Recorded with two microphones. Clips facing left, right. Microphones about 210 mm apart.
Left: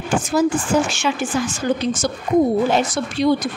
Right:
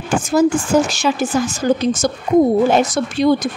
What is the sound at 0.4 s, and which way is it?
A woman's voice, 40° right (ahead or behind).